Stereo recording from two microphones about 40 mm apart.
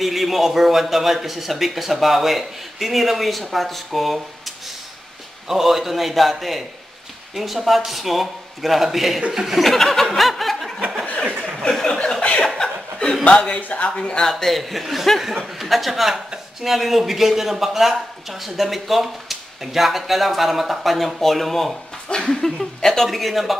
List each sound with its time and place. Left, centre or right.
0.0 s a man's voice: centre
9.6 s speech: centre
10.0 s snicker: centre
11.8 s chuckle: centre
12.2 s chuckle: left
12.4 s chuckle: centre
13.2 s speech: left
13.6 s speech: left
13.9 s speech: left
14.4 s a man's voice: centre
23.0 s speech: centre